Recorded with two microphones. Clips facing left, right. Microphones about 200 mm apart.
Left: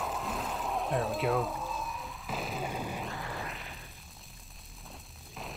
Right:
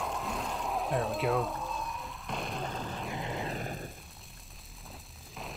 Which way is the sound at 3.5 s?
45° right (ahead or behind).